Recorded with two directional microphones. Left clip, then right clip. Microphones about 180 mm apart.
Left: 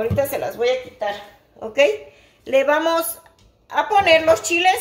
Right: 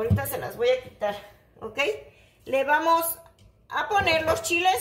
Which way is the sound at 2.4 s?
25° left (ahead or behind).